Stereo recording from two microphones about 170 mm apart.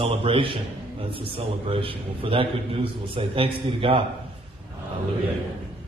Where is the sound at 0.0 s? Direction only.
30° right (ahead or behind).